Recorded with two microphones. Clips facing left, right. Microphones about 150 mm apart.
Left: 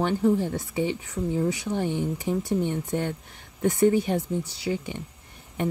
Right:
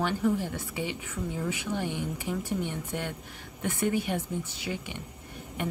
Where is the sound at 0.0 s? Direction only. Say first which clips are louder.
Left 5 dB; 45° left (ahead or behind).